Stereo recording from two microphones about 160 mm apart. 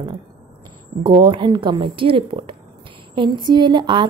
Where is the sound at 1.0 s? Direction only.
30° right (ahead or behind).